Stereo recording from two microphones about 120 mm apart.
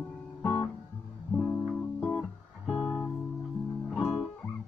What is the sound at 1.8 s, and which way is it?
Guitar, 15° left (ahead or behind).